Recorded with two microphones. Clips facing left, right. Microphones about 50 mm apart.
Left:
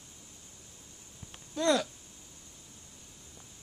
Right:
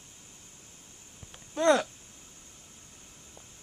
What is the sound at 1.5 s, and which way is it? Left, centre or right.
Speech, right.